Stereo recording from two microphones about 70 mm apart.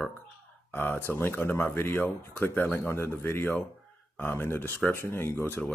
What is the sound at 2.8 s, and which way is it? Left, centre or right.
Speech, left.